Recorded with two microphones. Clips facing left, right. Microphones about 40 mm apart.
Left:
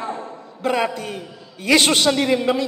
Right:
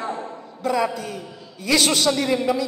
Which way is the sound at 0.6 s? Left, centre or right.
Left.